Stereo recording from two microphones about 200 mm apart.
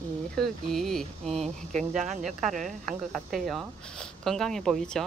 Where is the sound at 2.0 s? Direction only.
35° right (ahead or behind).